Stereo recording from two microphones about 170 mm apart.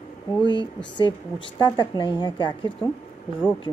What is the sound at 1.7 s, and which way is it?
A woman's voice, 30° left (ahead or behind).